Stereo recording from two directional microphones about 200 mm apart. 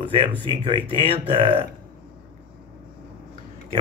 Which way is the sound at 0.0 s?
25° right (ahead or behind).